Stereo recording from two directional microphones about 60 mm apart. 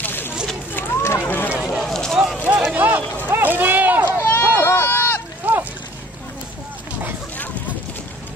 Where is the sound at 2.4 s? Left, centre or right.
Right.